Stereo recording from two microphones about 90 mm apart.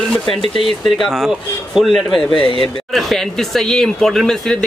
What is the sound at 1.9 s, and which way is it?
Speech, 65° left (ahead or behind).